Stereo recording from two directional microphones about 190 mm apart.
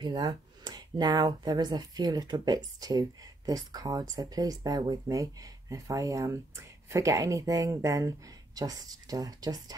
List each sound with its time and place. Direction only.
0.0 s speech: 20° right (ahead or behind)